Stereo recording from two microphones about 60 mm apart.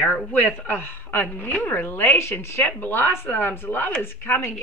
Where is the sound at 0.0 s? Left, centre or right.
Left.